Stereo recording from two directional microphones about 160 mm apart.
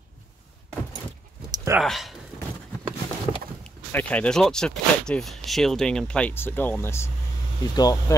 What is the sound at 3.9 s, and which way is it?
Speech, 10° left (ahead or behind).